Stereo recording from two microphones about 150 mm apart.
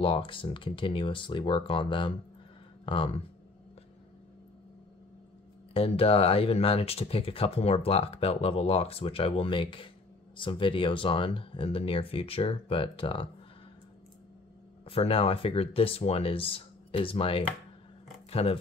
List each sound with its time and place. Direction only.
0.0 s speech: 35° left (ahead or behind)
5.7 s speech: 40° left (ahead or behind)
14.9 s speech: 40° left (ahead or behind)